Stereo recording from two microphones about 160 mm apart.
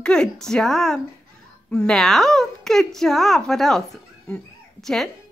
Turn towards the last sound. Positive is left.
turn(degrees=5)  # may be behind; listen again after turning